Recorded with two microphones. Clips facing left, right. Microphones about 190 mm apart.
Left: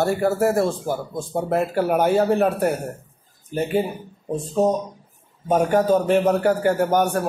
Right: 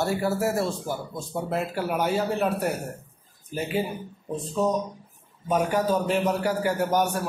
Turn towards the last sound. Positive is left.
turn(degrees=55)  # may be behind; listen again after turning